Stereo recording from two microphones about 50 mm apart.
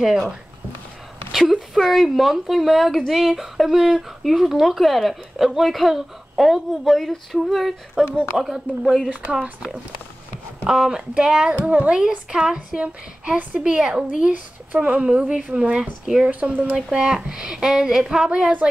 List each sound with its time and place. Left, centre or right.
1.3 s a woman's voice: centre
10.7 s speech: centre
11.6 s speech: right
12.3 s speech: centre
14.3 s speech: right
15.8 s speech: centre
16.3 s speech: right
16.7 s speech: centre